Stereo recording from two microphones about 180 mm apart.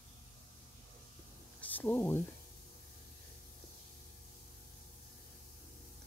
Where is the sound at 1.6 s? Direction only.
10° left (ahead or behind).